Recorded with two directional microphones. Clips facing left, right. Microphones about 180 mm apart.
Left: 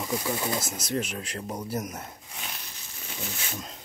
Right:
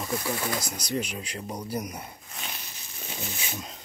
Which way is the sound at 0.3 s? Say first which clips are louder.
Left 1 dB; 20° left (ahead or behind).